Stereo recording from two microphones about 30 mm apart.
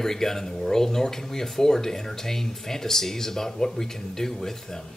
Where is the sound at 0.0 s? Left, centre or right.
Centre.